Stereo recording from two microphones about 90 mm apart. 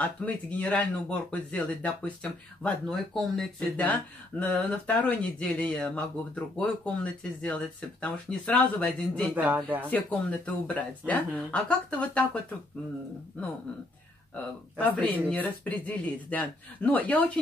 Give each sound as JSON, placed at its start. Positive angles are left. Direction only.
{"t": 0.0, "sound": "speech", "side_deg": 15}
{"t": 3.7, "sound": "speech", "side_deg": 15}
{"t": 9.3, "sound": "speech", "side_deg": -20}
{"t": 9.8, "sound": "speech", "side_deg": 15}
{"t": 14.3, "sound": "speech", "side_deg": 15}